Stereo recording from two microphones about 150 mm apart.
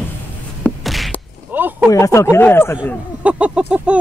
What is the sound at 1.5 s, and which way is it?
Speech, 10° right (ahead or behind).